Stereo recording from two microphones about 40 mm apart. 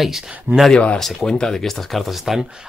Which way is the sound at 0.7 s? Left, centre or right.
Left.